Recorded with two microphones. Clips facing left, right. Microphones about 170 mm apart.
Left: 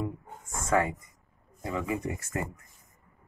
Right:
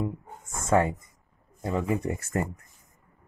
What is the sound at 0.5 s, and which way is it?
Speech, 25° right (ahead or behind).